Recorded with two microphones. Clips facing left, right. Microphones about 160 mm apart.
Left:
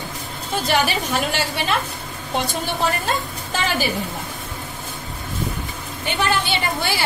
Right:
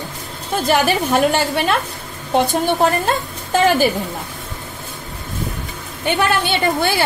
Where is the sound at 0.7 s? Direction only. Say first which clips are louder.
Right 5 dB; 45° right (ahead or behind).